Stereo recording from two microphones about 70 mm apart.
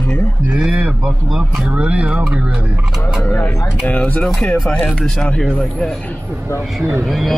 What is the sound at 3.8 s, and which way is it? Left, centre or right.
Speech, left.